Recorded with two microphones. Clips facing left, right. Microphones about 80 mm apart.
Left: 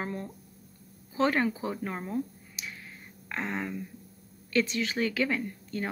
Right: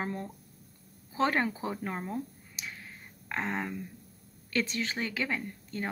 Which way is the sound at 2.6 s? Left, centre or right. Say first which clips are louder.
Left 1 dB; right.